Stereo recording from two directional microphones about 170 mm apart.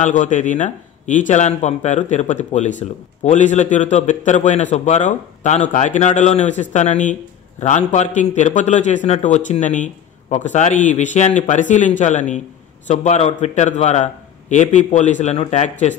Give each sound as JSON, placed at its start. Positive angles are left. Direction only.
{"t": 0.0, "sound": "speech", "side_deg": 45}